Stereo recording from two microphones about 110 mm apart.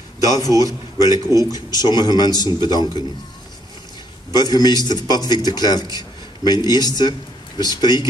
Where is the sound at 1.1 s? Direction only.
30° right (ahead or behind).